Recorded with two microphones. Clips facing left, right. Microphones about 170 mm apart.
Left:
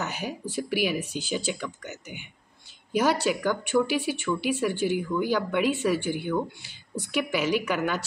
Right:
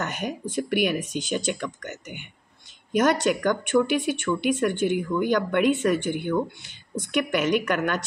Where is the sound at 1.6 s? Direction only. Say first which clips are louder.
Right 3 dB; 5° left (ahead or behind).